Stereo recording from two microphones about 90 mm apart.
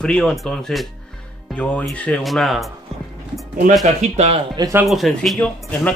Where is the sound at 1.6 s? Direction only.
15° left (ahead or behind).